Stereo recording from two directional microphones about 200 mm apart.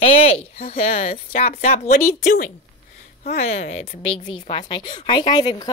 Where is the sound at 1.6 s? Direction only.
45° left (ahead or behind).